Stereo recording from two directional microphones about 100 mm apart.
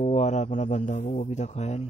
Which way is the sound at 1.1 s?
90° left.